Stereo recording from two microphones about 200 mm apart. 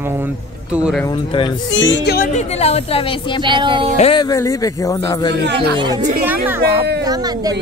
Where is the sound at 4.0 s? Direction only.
25° left (ahead or behind).